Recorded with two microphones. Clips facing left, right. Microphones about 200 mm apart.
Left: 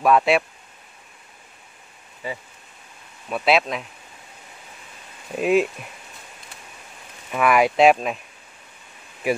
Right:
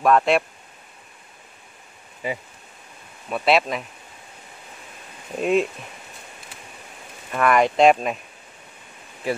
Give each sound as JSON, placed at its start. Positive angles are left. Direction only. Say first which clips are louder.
{"t": 0.0, "sound": "speech", "louder": "even", "side_deg": 5}
{"t": 2.2, "sound": "speech", "louder": "right 3 dB", "side_deg": -15}
{"t": 3.3, "sound": "speech", "louder": "even", "side_deg": 0}
{"t": 5.4, "sound": "speech", "louder": "left 1 dB", "side_deg": 5}
{"t": 7.2, "sound": "speech", "louder": "even", "side_deg": 5}